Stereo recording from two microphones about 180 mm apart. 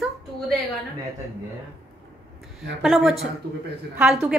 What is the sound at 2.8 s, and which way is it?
Speech, centre (ahead or behind).